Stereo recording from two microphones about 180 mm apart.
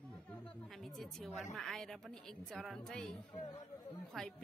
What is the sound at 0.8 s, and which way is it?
Speech, centre (ahead or behind).